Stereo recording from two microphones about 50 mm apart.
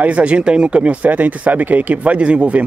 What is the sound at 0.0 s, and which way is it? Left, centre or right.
Speech, right.